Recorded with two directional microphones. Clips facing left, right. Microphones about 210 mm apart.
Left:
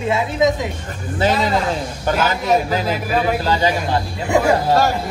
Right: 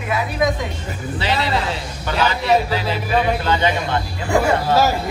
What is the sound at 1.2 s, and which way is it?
A man's voice, 45° left (ahead or behind).